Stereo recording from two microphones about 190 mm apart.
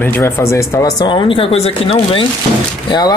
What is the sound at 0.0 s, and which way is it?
Speech, 10° left (ahead or behind).